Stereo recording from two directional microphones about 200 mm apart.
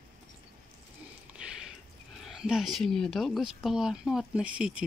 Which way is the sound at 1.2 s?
5° right (ahead or behind).